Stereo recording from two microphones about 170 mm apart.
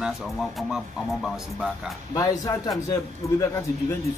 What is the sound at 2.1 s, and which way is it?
A man's voice, 20° left (ahead or behind).